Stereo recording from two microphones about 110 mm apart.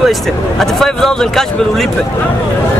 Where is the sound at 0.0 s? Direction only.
Centre (ahead or behind).